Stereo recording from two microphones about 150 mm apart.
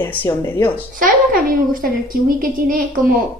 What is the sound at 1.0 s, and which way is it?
A woman's voice, 70° right (ahead or behind).